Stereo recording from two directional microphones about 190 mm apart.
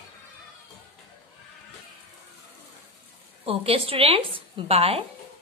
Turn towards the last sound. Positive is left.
turn(degrees=-30)  # may be behind; listen again after turning